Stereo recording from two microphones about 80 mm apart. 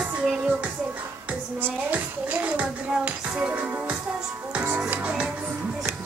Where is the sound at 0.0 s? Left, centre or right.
Centre.